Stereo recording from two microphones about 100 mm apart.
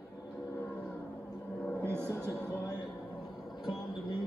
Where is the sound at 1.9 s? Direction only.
25° right (ahead or behind).